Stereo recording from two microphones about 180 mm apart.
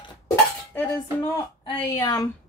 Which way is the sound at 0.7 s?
10° left (ahead or behind).